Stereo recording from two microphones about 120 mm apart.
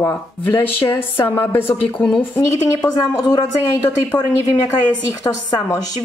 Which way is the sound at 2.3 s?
35° left (ahead or behind).